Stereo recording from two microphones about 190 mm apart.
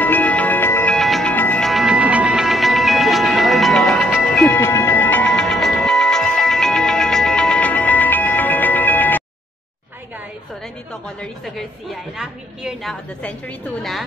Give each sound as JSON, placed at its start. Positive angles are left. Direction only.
{"t": 0.0, "sound": "music", "side_deg": 10}
{"t": 4.3, "sound": "music", "side_deg": 10}
{"t": 10.9, "sound": "a woman's voice", "side_deg": 5}